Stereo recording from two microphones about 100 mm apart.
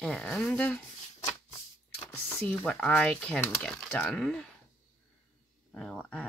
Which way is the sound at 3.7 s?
5° left (ahead or behind).